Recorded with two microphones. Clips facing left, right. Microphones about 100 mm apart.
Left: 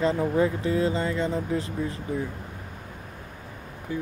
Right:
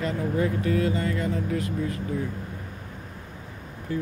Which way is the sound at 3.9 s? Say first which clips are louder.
Right 2 dB; 15° left (ahead or behind).